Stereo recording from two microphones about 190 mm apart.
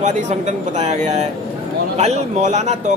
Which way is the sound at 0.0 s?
40° right (ahead or behind).